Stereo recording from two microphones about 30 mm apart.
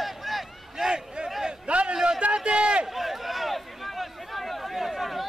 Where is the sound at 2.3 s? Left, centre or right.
Right.